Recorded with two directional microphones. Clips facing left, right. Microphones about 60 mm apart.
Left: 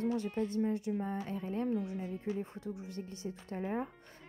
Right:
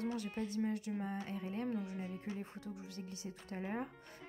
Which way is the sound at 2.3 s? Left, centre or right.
Left.